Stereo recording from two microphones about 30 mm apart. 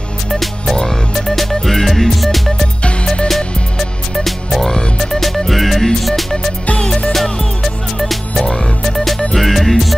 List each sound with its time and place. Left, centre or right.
0.3 s music: centre
7.6 s music: centre